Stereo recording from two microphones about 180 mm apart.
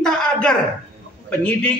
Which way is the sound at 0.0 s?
5° left (ahead or behind).